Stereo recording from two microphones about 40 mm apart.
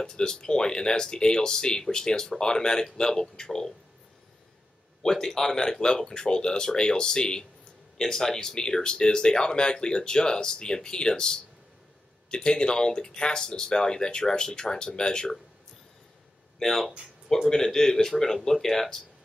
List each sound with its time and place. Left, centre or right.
0.0 s speech: centre
5.0 s speech: centre
16.5 s speech: centre